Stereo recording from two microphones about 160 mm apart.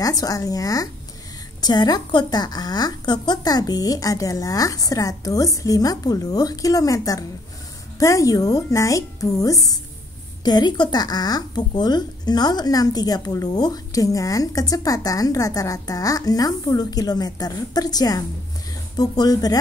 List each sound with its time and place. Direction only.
0.0 s speech: 20° left (ahead or behind)